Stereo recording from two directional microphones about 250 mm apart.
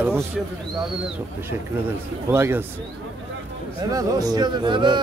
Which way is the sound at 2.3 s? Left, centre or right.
Centre.